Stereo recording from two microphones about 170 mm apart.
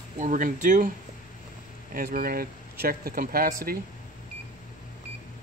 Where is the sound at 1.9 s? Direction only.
60° right (ahead or behind).